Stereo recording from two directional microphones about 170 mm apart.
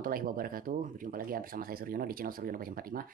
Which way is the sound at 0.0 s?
60° right (ahead or behind).